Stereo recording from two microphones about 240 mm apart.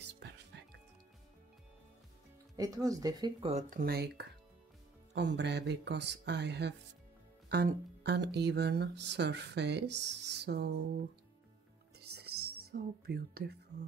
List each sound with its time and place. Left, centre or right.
2.5 s speech: centre
3.8 s music: right
12.0 s music: right
12.7 s speech: right